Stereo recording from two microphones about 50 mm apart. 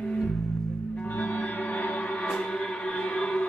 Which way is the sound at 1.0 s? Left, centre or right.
Left.